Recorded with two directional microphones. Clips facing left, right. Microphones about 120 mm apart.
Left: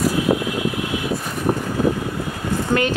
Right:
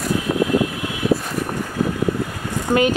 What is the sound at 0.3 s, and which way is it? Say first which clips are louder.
Vehicle: right 1 dB; 30° left (ahead or behind).